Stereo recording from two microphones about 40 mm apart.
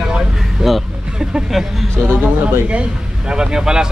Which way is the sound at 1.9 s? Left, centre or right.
Right.